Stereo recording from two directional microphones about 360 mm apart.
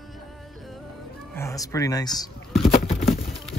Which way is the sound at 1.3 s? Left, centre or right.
Centre.